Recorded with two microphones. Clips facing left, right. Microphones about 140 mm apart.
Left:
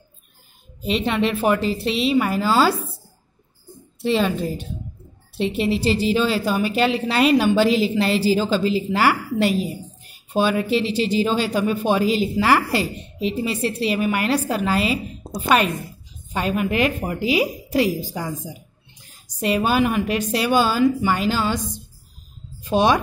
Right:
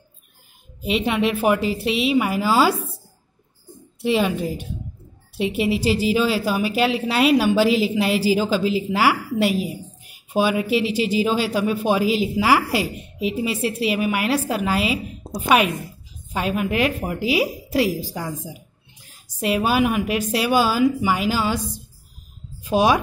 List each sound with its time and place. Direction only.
0.8 s a woman's voice: 10° right (ahead or behind)
4.0 s a woman's voice: 10° right (ahead or behind)
22.6 s speech: 5° right (ahead or behind)